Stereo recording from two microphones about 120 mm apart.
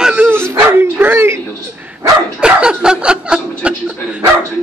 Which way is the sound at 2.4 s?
10° right (ahead or behind).